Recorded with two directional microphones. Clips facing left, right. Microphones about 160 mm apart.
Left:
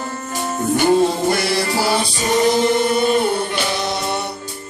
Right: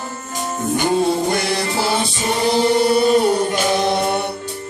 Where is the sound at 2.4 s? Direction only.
35° right (ahead or behind); by 4.2 s 50° right (ahead or behind).